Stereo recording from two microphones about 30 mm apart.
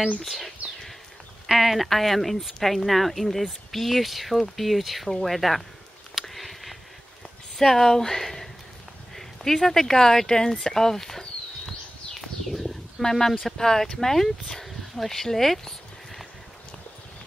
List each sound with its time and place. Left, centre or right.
1.5 s speech: right
1.9 s speech: centre
6.1 s a sound: centre
7.5 s speech: centre
9.1 s a sound: centre
13.1 s speech: centre